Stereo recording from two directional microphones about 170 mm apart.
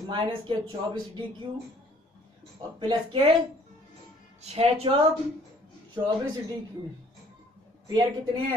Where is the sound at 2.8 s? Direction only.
30° right (ahead or behind).